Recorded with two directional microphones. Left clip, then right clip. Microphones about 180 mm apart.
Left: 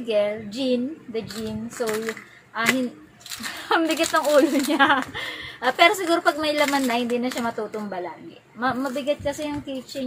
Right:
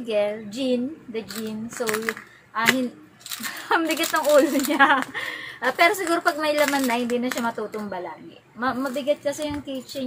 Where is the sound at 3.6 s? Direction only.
10° left (ahead or behind).